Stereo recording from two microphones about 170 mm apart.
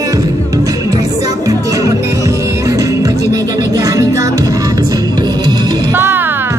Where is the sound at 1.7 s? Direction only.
20° right (ahead or behind).